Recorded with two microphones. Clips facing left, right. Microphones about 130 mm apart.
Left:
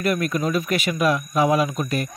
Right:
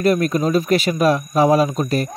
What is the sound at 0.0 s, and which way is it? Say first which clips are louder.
Speech: right 5 dB; 30° right (ahead or behind).